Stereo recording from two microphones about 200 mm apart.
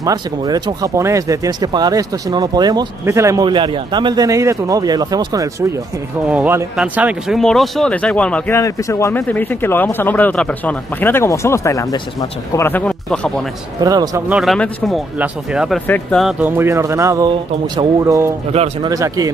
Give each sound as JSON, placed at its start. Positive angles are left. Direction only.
{"t": 0.0, "sound": "speech", "side_deg": -20}
{"t": 6.2, "sound": "speech", "side_deg": -5}
{"t": 13.7, "sound": "speech", "side_deg": -20}
{"t": 14.3, "sound": "speech", "side_deg": 0}
{"t": 18.5, "sound": "speech", "side_deg": -30}
{"t": 18.9, "sound": "speech", "side_deg": -15}